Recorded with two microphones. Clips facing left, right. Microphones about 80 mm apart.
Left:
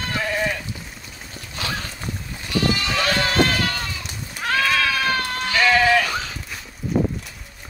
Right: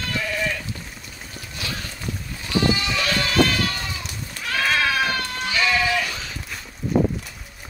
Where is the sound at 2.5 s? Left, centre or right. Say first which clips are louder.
Right 1 dB; right.